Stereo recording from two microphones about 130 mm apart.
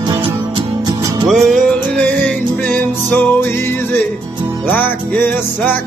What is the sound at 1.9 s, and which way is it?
Music, 10° left (ahead or behind).